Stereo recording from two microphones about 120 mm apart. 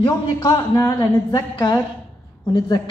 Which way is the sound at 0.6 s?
20° left (ahead or behind).